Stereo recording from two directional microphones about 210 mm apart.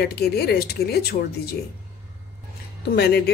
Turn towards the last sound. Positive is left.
turn(degrees=50)  # may be behind; listen again after turning